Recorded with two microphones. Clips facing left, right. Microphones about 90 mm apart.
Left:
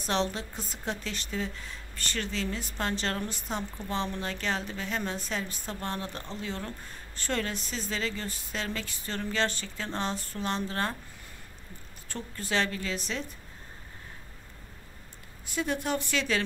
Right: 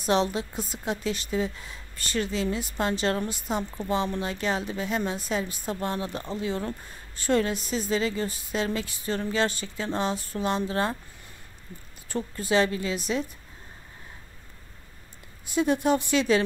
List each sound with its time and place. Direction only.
0.0 s a woman's voice: 10° right (ahead or behind)
12.1 s a woman's voice: 10° right (ahead or behind)
15.4 s speech: 20° right (ahead or behind)